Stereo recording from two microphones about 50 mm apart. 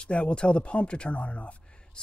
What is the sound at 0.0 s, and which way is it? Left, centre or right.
Speech, left.